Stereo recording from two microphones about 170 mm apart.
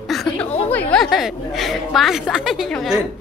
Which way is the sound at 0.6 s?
10° left (ahead or behind).